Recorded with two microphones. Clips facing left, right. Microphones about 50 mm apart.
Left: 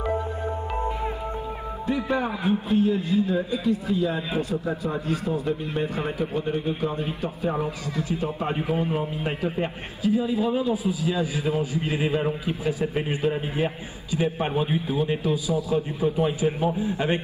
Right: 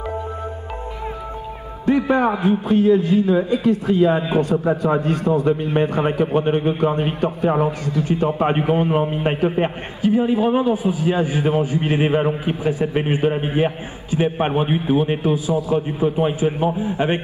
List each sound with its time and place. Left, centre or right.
1.9 s a man's voice: right
5.5 s a man's voice: right